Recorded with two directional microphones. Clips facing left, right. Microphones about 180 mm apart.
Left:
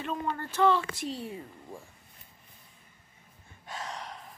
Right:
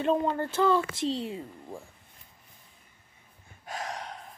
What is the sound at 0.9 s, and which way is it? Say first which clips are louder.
Speech: right 6 dB; 20° right (ahead or behind).